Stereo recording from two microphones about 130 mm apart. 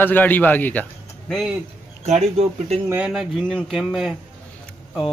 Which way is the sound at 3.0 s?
5° right (ahead or behind).